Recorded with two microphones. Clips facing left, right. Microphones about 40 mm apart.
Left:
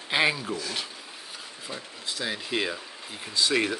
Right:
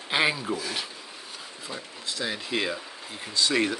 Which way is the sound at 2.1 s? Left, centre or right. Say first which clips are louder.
Even; centre.